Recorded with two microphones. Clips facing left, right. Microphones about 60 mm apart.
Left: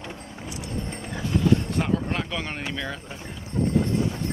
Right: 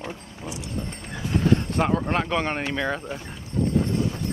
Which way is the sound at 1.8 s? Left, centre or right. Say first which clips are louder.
Right 3 dB; right.